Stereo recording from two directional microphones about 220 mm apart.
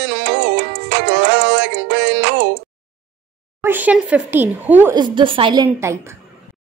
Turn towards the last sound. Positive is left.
turn(degrees=-10)  # may be behind; listen again after turning